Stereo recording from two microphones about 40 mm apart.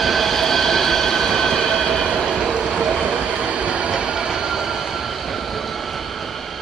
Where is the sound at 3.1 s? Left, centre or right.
Right.